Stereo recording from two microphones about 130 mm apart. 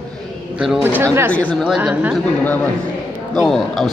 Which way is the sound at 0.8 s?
15° right (ahead or behind).